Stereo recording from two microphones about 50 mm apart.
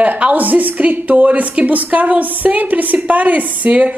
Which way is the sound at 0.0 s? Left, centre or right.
Right.